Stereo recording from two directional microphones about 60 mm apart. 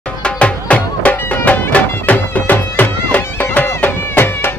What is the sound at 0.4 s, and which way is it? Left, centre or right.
Music, left.